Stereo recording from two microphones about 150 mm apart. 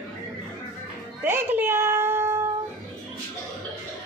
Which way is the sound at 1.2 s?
15° right (ahead or behind).